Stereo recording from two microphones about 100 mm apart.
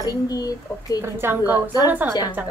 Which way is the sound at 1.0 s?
25° right (ahead or behind).